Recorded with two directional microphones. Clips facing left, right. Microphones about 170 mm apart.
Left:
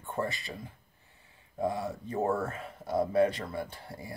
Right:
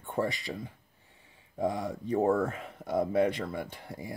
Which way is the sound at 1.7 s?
15° right (ahead or behind).